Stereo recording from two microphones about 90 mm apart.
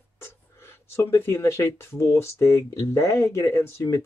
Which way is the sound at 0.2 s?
30° left (ahead or behind).